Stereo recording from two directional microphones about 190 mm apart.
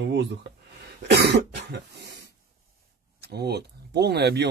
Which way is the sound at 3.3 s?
60° right (ahead or behind).